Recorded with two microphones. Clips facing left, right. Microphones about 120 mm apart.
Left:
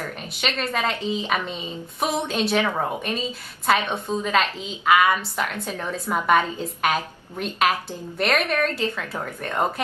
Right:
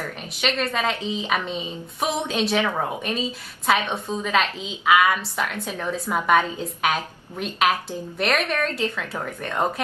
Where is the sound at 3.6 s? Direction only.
Centre (ahead or behind).